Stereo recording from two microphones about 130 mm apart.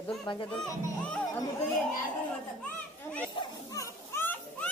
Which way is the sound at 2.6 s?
10° left (ahead or behind).